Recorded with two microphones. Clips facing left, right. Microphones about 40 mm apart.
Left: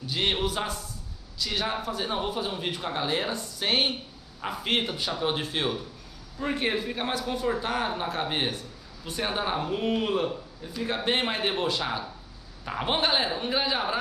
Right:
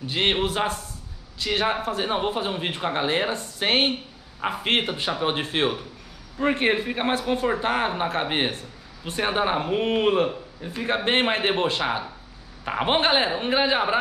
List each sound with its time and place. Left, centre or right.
0.0 s a man's voice: right